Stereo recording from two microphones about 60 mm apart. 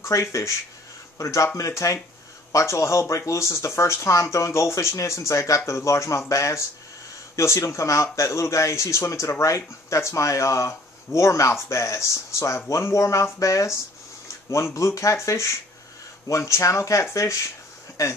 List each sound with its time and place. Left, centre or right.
0.0 s speech: left